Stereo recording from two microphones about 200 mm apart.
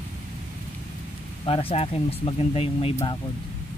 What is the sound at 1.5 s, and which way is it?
Speech, 30° left (ahead or behind).